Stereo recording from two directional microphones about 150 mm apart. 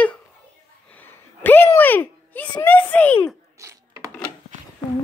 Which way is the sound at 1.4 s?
15° left (ahead or behind).